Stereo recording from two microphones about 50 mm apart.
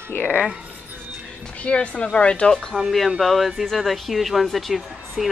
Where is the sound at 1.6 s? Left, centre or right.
Left.